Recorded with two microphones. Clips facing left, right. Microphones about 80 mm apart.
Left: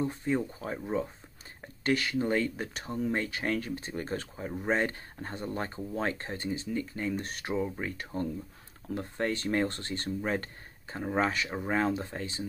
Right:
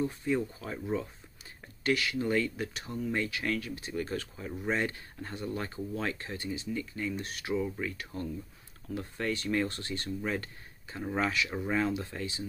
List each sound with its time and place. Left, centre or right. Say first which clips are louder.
0.0 s speech: even; left